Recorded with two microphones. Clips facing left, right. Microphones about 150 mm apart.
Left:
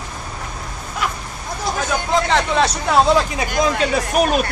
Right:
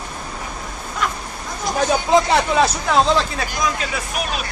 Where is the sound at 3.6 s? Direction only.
30° left (ahead or behind).